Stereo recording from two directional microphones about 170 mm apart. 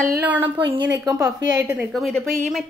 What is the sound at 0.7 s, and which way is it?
A woman's voice, 20° right (ahead or behind).